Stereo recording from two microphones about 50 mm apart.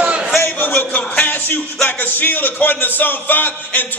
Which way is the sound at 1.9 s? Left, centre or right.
Left.